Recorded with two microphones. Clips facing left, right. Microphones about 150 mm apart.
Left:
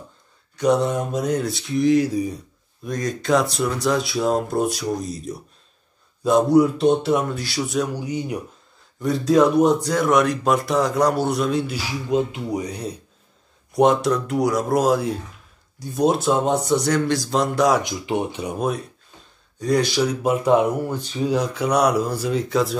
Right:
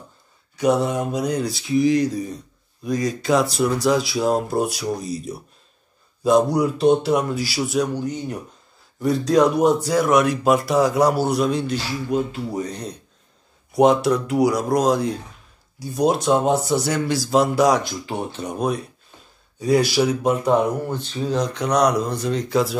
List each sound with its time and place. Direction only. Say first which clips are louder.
0.6 s speech: even; 5° right (ahead or behind)
2.8 s speech: right 3 dB; centre (ahead or behind)
7.9 s speech: even; 10° left (ahead or behind)
12.1 s speech: left 3 dB; 20° left (ahead or behind)
13.7 s speech: right 1 dB; centre (ahead or behind)
17.8 s speech: left 4 dB; 20° left (ahead or behind); by 20.2 s 5° right (ahead or behind)
20.2 s speech: left 4 dB; 10° left (ahead or behind)